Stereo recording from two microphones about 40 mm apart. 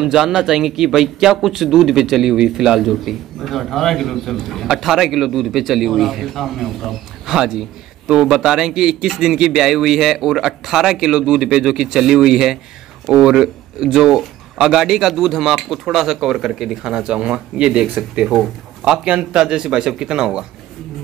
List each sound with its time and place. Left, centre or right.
0.0 s a man's voice: centre
4.6 s a man's voice: centre
7.2 s a man's voice: centre
9.7 s a man's voice: centre
11.1 s a man's voice: right; by 16.7 s centre
16.8 s speech: centre
18.9 s speech: right